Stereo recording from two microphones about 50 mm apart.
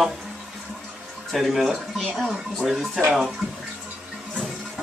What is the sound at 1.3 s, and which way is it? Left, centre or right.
Speech, centre.